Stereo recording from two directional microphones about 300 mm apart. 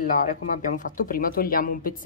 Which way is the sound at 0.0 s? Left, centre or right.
Left.